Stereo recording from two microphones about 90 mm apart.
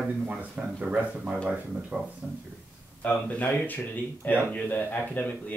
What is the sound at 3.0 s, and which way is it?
Speech, 15° left (ahead or behind).